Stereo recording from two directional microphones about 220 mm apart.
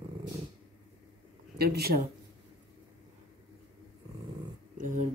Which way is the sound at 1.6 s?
45° right (ahead or behind).